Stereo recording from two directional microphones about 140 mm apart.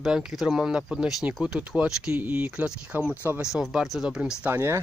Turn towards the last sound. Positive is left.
turn(degrees=-15)  # may be behind; listen again after turning